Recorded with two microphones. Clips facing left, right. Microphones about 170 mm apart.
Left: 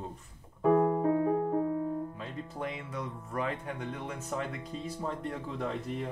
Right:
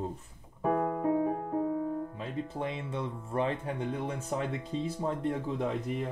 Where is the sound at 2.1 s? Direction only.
25° right (ahead or behind).